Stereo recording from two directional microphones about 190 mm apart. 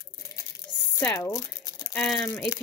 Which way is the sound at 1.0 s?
10° left (ahead or behind).